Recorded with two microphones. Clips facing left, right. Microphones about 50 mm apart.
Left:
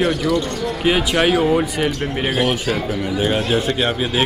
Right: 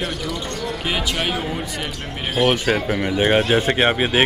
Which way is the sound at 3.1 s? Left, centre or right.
Right.